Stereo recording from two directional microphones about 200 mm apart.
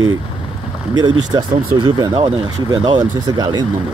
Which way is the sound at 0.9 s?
20° right (ahead or behind).